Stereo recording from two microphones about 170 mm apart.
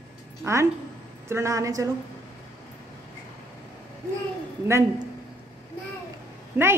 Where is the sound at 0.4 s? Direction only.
15° right (ahead or behind).